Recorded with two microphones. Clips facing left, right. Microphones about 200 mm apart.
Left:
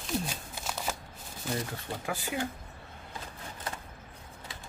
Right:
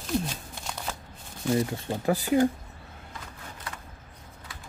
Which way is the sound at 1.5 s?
5° left (ahead or behind).